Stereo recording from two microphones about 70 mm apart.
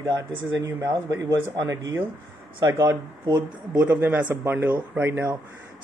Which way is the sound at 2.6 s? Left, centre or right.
Right.